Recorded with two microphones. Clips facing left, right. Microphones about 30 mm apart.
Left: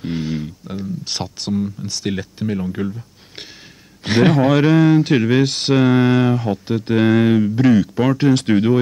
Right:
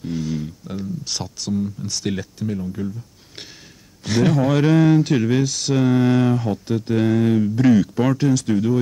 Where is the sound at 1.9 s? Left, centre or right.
Centre.